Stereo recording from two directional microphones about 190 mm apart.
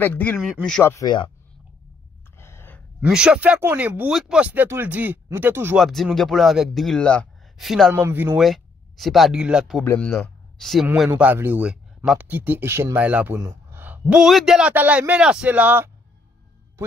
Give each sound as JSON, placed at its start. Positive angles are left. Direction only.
{"t": 0.0, "sound": "speech", "side_deg": 10}
{"t": 0.9, "sound": "speech", "side_deg": 25}
{"t": 2.3, "sound": "a sound", "side_deg": 15}
{"t": 3.0, "sound": "speech", "side_deg": -5}
{"t": 5.9, "sound": "speech", "side_deg": 0}
{"t": 9.8, "sound": "a man's voice", "side_deg": 10}
{"t": 11.1, "sound": "speech", "side_deg": -10}